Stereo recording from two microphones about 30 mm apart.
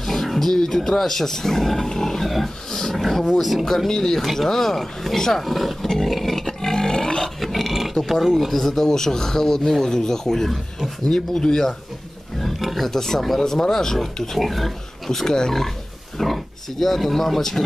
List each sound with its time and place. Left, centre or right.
0.0 s speech: centre
2.2 s wild animals: centre
2.9 s speech: centre
3.6 s speech: centre
3.9 s speech: left
4.2 s speech: centre
6.7 s roar: left
7.3 s dog: centre
8.0 s speech: centre
12.4 s pig: centre
12.6 s speech: centre
14.3 s speech: centre
15.1 s speech: left
16.2 s speech: centre